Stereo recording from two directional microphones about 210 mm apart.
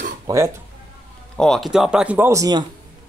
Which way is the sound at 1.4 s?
Centre (ahead or behind).